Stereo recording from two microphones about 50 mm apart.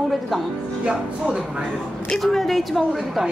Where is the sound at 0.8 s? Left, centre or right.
Right.